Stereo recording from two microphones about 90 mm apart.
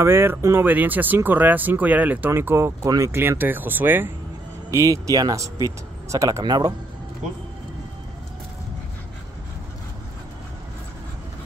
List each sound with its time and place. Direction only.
0.0 s speech: 30° right (ahead or behind)
4.6 s speech: 40° right (ahead or behind)
6.4 s speech: 45° right (ahead or behind)